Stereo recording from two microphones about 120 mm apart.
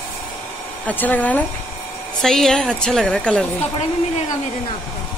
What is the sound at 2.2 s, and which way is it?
A woman's voice, 5° left (ahead or behind).